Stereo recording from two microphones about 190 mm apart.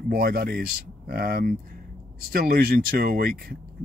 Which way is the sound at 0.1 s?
50° right (ahead or behind).